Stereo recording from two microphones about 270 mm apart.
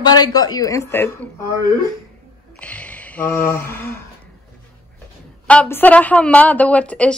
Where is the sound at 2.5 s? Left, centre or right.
Centre.